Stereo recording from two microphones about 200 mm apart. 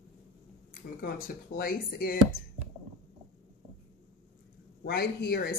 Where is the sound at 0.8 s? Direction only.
45° left (ahead or behind).